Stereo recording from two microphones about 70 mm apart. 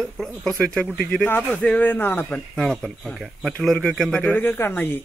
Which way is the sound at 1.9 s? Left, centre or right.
Left.